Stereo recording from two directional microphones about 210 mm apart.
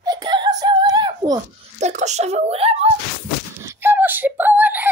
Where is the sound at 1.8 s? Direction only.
35° right (ahead or behind).